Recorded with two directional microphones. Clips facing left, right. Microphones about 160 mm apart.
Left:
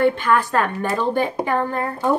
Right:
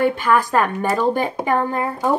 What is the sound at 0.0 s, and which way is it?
A woman's voice, 10° right (ahead or behind).